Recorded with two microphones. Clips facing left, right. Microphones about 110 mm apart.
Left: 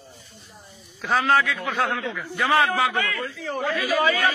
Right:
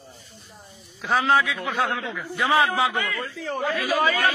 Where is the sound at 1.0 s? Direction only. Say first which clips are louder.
Even; 15° right (ahead or behind).